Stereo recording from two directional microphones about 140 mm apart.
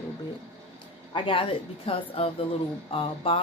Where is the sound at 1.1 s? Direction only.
40° left (ahead or behind).